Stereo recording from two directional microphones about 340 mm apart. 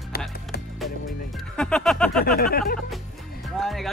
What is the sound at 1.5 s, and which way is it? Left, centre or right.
Speech, centre.